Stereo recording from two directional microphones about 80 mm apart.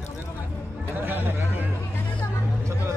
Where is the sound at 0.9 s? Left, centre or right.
Right.